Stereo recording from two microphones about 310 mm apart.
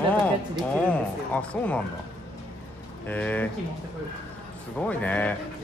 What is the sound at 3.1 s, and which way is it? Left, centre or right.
Speech, centre.